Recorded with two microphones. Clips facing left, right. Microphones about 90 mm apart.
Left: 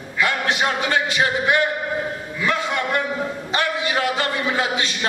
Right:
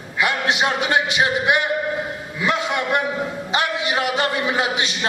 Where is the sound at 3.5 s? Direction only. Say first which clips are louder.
Even; 20° right (ahead or behind).